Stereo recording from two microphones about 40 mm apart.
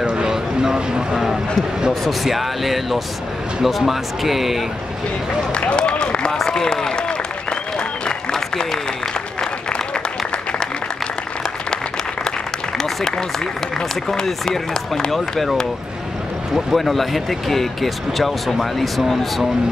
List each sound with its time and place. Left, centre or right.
0.0 s vehicle: right
2.0 s speech: centre
5.5 s a sound: left
8.0 s applause: centre
12.3 s applause: centre
13.7 s speech: centre
16.5 s speech: centre